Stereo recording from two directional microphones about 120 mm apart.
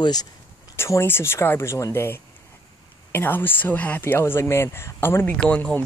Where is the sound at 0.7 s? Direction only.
20° left (ahead or behind).